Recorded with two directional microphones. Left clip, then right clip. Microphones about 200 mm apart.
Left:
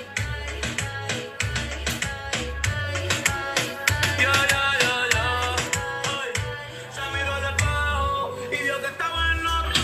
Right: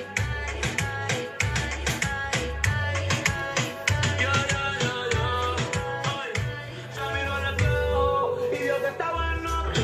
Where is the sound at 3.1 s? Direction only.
15° left (ahead or behind); by 6.1 s 35° left (ahead or behind).